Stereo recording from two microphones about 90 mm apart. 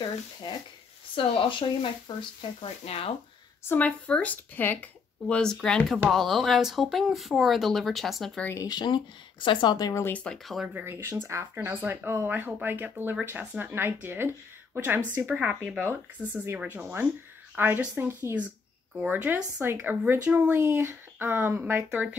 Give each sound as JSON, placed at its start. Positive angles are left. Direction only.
{"t": 0.0, "sound": "speech", "side_deg": 55}
{"t": 1.1, "sound": "speech", "side_deg": 70}
{"t": 2.6, "sound": "speech", "side_deg": 90}
{"t": 3.6, "sound": "speech", "side_deg": 20}
{"t": 5.3, "sound": "speech", "side_deg": 10}
{"t": 8.5, "sound": "speech", "side_deg": 50}
{"t": 9.8, "sound": "speech", "side_deg": 45}
{"t": 10.0, "sound": "speech", "side_deg": 15}
{"t": 10.3, "sound": "speech", "side_deg": 0}
{"t": 10.7, "sound": "speech", "side_deg": -25}
{"t": 16.2, "sound": "speech", "side_deg": 20}
{"t": 16.7, "sound": "speech", "side_deg": -25}